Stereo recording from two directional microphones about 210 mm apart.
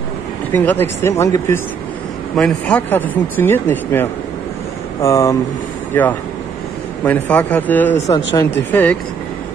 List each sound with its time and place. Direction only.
0.5 s speech: 10° left (ahead or behind)